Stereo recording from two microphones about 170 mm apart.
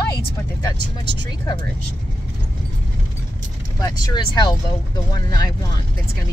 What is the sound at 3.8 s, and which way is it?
Speech, 25° left (ahead or behind).